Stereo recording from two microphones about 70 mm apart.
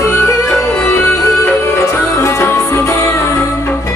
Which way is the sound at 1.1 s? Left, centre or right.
Left.